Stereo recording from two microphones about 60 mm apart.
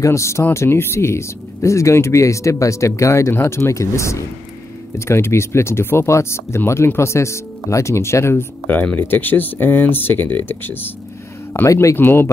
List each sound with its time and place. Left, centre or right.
0.0 s speech: left
3.3 s speech: left
8.9 s speech: left
11.6 s speech: left
12.0 s speech: left